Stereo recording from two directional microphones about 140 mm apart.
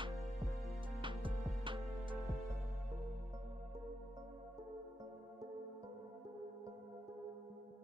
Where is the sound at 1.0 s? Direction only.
35° right (ahead or behind).